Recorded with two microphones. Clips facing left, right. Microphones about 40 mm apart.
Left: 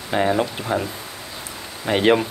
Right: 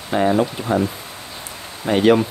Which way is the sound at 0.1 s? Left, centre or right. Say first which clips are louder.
Right 2 dB; centre.